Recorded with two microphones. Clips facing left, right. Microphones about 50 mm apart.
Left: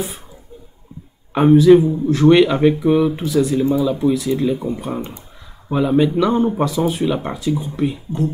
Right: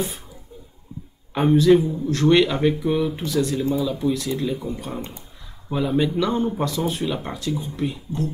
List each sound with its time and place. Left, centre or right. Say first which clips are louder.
1.3 s speech: left 6 dB; centre
3.5 s speech: left 6 dB; centre